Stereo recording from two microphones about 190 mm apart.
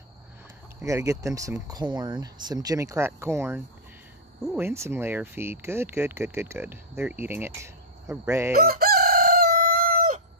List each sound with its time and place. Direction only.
0.7 s speech: 15° right (ahead or behind)
8.5 s chicken: 50° right (ahead or behind)